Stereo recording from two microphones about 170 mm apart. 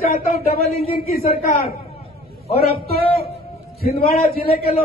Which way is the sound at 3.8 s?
60° left (ahead or behind).